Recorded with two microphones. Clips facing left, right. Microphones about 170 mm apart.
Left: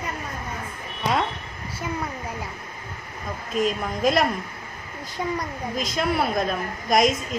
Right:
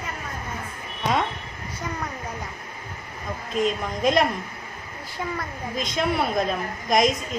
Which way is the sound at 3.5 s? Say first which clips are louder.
Even; 5° left (ahead or behind).